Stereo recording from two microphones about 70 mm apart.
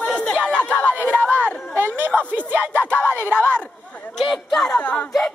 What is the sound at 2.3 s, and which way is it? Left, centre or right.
Music, right.